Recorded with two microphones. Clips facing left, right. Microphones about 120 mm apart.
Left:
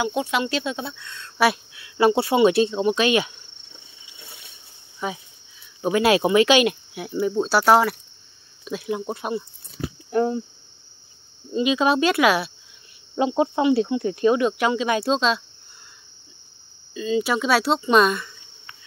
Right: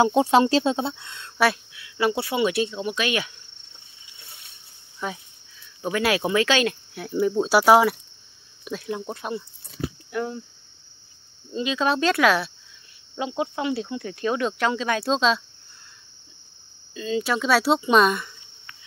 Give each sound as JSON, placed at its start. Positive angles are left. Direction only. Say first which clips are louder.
{"t": 0.0, "sound": "speech", "louder": "right 6 dB", "side_deg": -35}
{"t": 1.7, "sound": "speech", "louder": "left 5 dB", "side_deg": 30}
{"t": 5.0, "sound": "speech", "louder": "left 2 dB", "side_deg": 5}
{"t": 5.8, "sound": "speech", "louder": "left 5 dB", "side_deg": 20}
{"t": 7.1, "sound": "speech", "louder": "right 1 dB", "side_deg": 0}
{"t": 7.4, "sound": "speech", "louder": "right 1 dB", "side_deg": -10}
{"t": 8.7, "sound": "speech", "louder": "left 3 dB", "side_deg": 10}
{"t": 10.1, "sound": "speech", "louder": "left 8 dB", "side_deg": 35}
{"t": 11.5, "sound": "speech", "louder": "left 4 dB", "side_deg": 15}
{"t": 13.1, "sound": "speech", "louder": "left 7 dB", "side_deg": 30}
{"t": 14.3, "sound": "speech", "louder": "left 4 dB", "side_deg": 10}
{"t": 16.9, "sound": "speech", "louder": "left 3 dB", "side_deg": 5}